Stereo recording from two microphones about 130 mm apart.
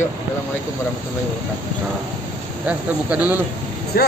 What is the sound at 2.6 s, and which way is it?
Speech, 10° right (ahead or behind).